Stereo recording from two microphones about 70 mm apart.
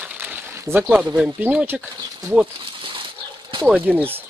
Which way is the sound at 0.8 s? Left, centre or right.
Centre.